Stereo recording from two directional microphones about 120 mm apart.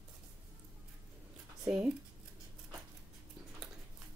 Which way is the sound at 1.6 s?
5° right (ahead or behind).